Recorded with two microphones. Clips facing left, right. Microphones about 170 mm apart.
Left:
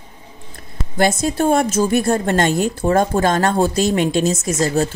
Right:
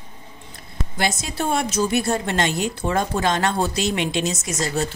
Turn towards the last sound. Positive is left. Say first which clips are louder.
# left 6 dB
turn(degrees=45)  # may be behind; listen again after turning